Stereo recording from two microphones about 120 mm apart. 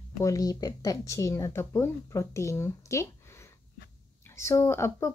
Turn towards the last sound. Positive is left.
turn(degrees=20)  # may be behind; listen again after turning